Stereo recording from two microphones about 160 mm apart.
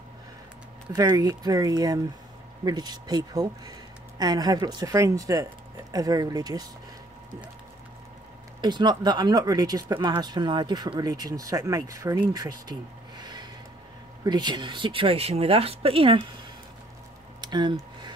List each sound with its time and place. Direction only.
0.9 s speech: 25° right (ahead or behind)
8.5 s speech: 30° right (ahead or behind)
13.2 s rub: 25° right (ahead or behind)
14.2 s speech: 25° right (ahead or behind)
17.4 s a sound: 25° right (ahead or behind)